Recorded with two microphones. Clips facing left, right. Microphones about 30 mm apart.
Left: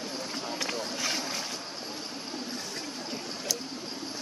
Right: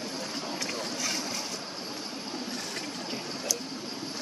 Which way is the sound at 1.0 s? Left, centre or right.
Left.